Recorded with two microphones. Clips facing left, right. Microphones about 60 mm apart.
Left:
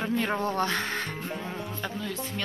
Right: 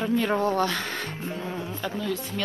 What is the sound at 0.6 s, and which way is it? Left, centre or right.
Speech, left.